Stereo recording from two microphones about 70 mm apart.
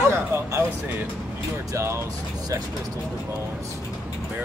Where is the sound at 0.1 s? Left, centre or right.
Right.